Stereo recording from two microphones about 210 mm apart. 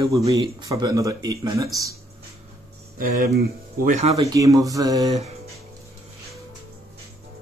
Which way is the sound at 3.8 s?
35° right (ahead or behind).